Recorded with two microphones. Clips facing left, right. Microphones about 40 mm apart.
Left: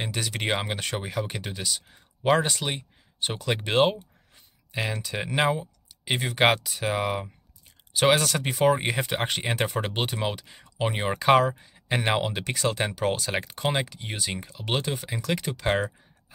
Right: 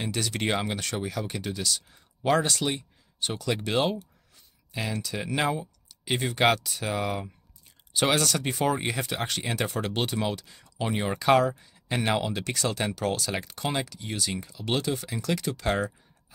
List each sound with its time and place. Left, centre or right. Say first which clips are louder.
0.0 s speech: right 1 dB; centre
5.1 s speech: left 3 dB; left
7.9 s speech: left 3 dB; centre
12.7 s speech: left 2 dB; left